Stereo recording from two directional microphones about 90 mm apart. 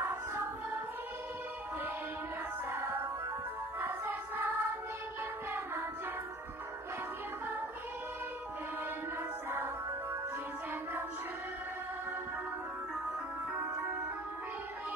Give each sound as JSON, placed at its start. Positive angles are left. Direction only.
{"t": 0.0, "sound": "child singing", "side_deg": -25}
{"t": 2.7, "sound": "music", "side_deg": -30}
{"t": 3.8, "sound": "choir", "side_deg": -20}
{"t": 9.5, "sound": "music", "side_deg": -25}